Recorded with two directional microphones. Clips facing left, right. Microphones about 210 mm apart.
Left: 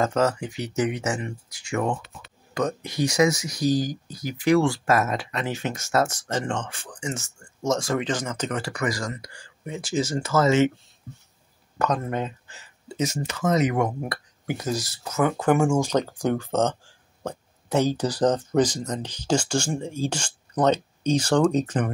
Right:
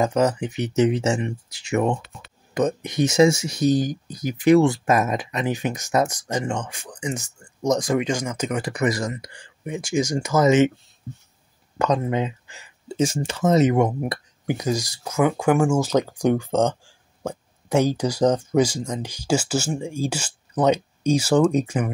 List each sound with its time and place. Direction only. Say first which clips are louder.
0.0 s speech: right 2 dB; 15° right (ahead or behind)
11.8 s speech: right 4 dB; 15° right (ahead or behind)
12.8 s speech: right 4 dB; 30° right (ahead or behind); by 21.9 s 10° right (ahead or behind)